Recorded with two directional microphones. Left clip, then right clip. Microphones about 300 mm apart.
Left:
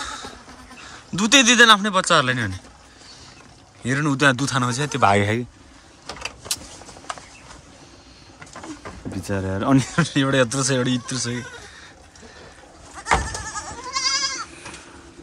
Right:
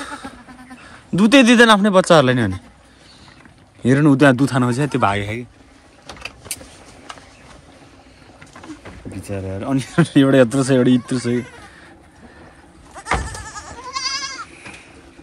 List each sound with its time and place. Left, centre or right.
0.0 s goat: centre
0.7 s a man's voice: centre
3.8 s speech: centre
5.1 s speech: left
9.1 s speech: centre
9.9 s speech: centre
13.0 s goat: centre